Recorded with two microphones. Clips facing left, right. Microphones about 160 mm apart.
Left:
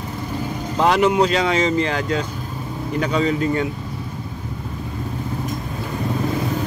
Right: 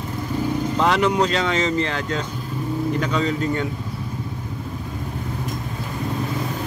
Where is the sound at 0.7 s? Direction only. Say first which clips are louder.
Left 4 dB; 15° left (ahead or behind).